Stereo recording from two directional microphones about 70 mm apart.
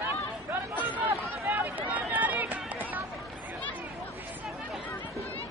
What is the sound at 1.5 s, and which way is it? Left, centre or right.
Run, right.